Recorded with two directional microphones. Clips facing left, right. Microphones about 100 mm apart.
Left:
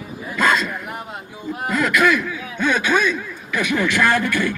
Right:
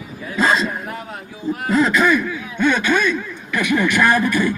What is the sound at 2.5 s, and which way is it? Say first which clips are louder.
Speech: right 1 dB; 5° left (ahead or behind).